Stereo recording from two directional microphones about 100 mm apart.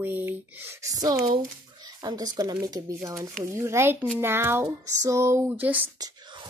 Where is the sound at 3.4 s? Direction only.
30° right (ahead or behind).